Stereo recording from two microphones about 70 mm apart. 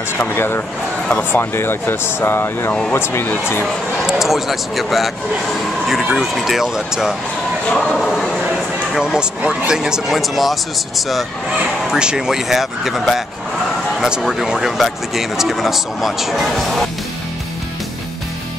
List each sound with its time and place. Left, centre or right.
0.2 s speech: left
4.0 s speech: centre
8.5 s speech: centre